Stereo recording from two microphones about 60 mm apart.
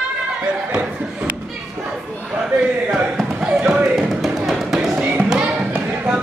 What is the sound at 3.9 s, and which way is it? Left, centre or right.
Music, centre.